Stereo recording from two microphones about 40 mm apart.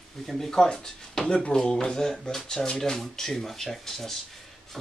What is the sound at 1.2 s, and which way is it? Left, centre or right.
Speech, left.